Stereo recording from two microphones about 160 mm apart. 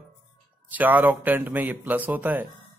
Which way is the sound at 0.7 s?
10° right (ahead or behind).